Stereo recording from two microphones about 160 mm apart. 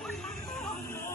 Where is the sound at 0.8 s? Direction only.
15° left (ahead or behind).